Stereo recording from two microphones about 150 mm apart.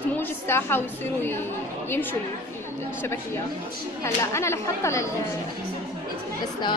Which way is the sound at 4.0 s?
20° left (ahead or behind).